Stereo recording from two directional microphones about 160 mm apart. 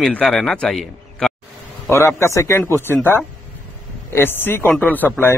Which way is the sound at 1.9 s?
15° left (ahead or behind).